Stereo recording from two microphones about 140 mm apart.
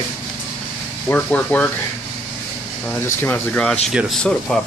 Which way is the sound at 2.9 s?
15° left (ahead or behind).